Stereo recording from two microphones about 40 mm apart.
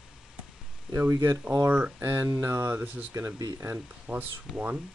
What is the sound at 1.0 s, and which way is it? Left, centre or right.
Speech, right.